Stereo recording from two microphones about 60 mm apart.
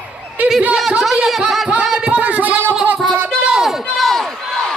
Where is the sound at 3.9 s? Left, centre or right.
Centre.